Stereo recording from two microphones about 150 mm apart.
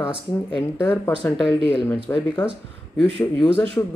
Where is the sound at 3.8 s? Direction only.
20° left (ahead or behind).